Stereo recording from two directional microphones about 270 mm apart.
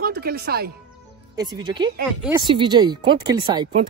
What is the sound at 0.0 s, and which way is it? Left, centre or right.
Speech, right.